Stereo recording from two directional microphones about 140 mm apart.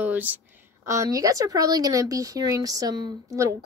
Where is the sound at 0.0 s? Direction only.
10° right (ahead or behind).